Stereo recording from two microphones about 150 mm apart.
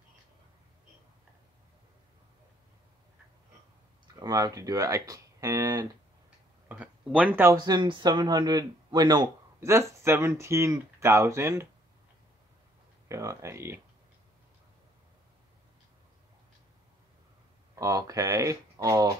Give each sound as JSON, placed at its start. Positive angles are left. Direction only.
{"t": 4.2, "sound": "speech", "side_deg": -25}
{"t": 6.7, "sound": "speech", "side_deg": -5}
{"t": 7.5, "sound": "speech", "side_deg": -30}
{"t": 13.1, "sound": "speech", "side_deg": -20}
{"t": 17.7, "sound": "speech", "side_deg": -25}